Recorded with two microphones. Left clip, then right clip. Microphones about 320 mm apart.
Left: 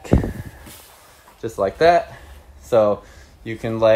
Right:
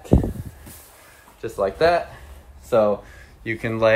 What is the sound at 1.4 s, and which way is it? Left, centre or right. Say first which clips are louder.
Speech: left 3 dB; left.